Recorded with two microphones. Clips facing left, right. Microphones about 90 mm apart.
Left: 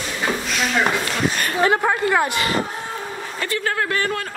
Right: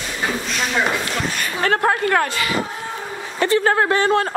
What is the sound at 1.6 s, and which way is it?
Speech, 15° left (ahead or behind).